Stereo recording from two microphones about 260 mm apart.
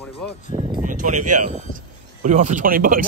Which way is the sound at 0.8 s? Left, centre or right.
Right.